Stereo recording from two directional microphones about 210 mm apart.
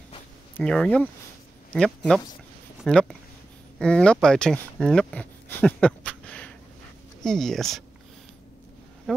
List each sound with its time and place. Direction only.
0.6 s speech: 5° left (ahead or behind)